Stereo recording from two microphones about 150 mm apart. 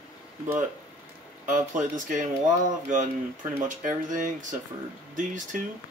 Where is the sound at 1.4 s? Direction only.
55° right (ahead or behind).